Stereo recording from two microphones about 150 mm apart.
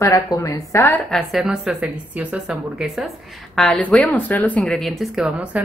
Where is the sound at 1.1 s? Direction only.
Centre (ahead or behind).